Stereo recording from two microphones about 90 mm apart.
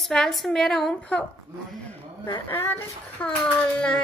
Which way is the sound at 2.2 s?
25° left (ahead or behind).